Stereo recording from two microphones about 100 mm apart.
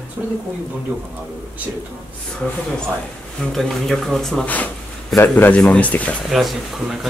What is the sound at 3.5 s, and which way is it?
Speech, 5° left (ahead or behind).